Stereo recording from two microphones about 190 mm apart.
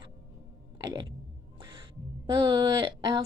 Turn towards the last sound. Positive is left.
turn(degrees=-25)  # may be behind; listen again after turning